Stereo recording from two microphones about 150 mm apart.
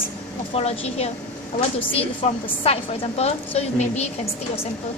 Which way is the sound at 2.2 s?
45° left (ahead or behind).